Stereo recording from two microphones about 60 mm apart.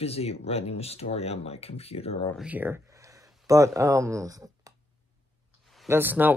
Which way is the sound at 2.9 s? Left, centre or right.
Right.